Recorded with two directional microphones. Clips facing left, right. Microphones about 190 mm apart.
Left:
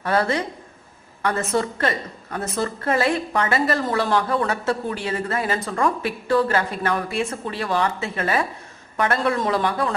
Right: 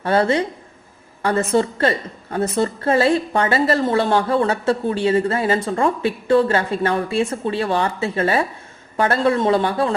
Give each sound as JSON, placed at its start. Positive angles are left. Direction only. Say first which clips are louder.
{"t": 0.0, "sound": "a woman's voice", "louder": "right 4 dB", "side_deg": -30}
{"t": 1.5, "sound": "a woman's voice", "louder": "right 5 dB", "side_deg": -30}